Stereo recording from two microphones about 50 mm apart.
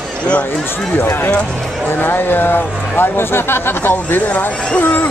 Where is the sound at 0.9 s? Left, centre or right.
Left.